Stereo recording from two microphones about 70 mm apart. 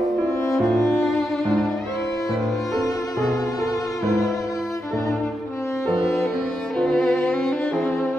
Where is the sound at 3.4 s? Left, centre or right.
Left.